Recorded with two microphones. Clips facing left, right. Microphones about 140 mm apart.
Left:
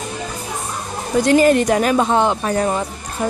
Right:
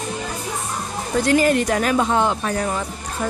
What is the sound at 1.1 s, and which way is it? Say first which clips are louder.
Speech: left 4 dB; 20° left (ahead or behind).